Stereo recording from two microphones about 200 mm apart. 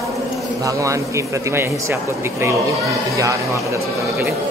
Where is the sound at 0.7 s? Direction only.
15° right (ahead or behind).